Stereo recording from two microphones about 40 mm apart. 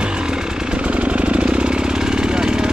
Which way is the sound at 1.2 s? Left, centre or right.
Right.